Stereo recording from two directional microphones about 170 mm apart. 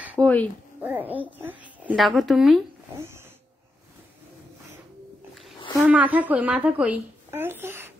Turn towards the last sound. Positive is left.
turn(degrees=-15)  # may be behind; listen again after turning